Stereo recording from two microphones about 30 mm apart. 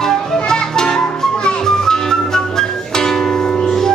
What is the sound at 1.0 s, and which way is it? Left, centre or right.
Music, left.